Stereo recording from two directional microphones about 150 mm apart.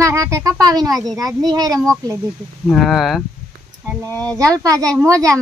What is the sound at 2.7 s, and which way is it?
Speech, centre (ahead or behind).